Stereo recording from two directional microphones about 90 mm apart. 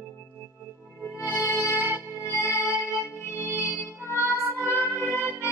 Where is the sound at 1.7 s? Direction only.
20° right (ahead or behind).